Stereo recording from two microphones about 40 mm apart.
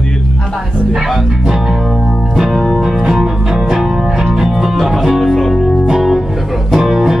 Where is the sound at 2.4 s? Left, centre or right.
Centre.